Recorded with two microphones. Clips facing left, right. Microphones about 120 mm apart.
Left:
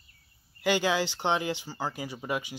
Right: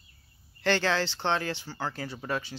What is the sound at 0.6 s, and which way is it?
Speech, 10° left (ahead or behind).